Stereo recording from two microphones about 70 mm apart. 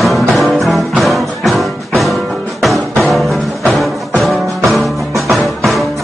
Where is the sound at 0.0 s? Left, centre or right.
Centre.